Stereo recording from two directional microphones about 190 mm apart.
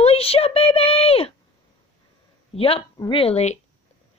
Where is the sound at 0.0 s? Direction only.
30° left (ahead or behind).